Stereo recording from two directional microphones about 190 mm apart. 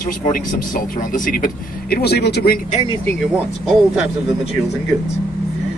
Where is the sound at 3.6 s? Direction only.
5° right (ahead or behind).